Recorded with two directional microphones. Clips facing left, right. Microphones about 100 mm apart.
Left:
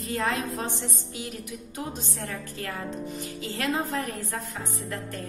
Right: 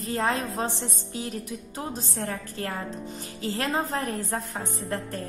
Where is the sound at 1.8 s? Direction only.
35° right (ahead or behind).